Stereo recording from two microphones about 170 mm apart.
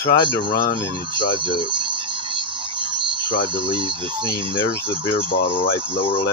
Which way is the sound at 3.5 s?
30° right (ahead or behind).